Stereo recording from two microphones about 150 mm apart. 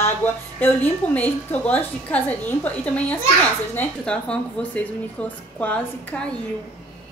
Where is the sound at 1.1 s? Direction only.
10° left (ahead or behind).